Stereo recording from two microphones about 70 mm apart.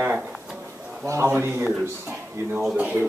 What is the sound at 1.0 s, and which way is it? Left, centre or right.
Speech, right.